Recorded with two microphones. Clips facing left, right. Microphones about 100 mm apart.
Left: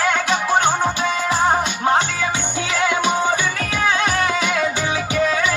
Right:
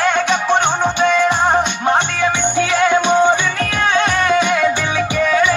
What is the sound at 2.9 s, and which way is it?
Music, 25° right (ahead or behind).